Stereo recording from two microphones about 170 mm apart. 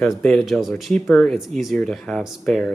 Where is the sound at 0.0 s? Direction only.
5° left (ahead or behind).